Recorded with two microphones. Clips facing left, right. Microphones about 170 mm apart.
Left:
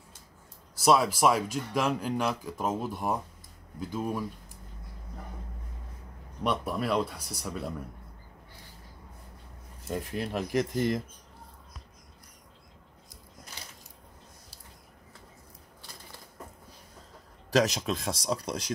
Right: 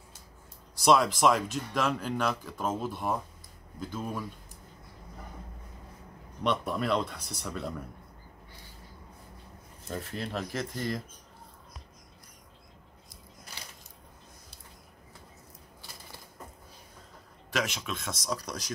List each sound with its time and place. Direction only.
0.7 s speech: 5° left (ahead or behind)
6.4 s speech: 10° left (ahead or behind)
9.8 s speech: 10° left (ahead or behind)
17.5 s speech: 35° left (ahead or behind)